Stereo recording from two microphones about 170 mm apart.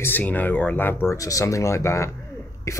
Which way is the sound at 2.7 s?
20° left (ahead or behind).